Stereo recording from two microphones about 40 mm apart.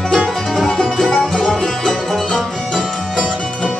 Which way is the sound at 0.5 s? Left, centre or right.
Centre.